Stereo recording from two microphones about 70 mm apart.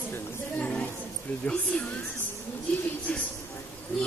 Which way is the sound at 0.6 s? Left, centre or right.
Centre.